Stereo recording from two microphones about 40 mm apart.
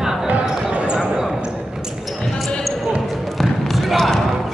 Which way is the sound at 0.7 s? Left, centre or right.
Right.